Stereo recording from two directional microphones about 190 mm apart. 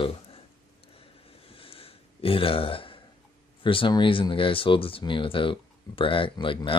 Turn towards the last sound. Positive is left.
turn(degrees=25)  # may be behind; listen again after turning